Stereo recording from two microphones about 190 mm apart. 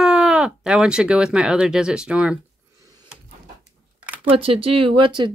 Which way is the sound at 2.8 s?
15° right (ahead or behind).